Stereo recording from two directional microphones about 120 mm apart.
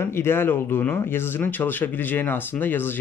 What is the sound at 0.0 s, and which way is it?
Speech, 20° left (ahead or behind).